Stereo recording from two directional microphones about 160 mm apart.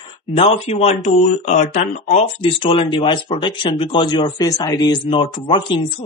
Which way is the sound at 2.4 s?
35° left (ahead or behind).